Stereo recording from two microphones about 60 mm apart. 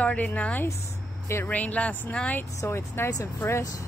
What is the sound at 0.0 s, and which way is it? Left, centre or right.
Speech, left.